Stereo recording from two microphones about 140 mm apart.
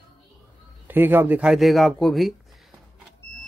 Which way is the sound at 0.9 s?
15° right (ahead or behind).